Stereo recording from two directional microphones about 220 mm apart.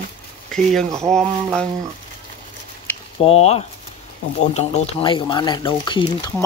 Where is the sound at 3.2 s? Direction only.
30° left (ahead or behind).